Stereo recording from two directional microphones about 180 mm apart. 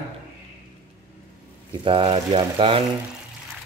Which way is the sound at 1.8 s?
30° right (ahead or behind).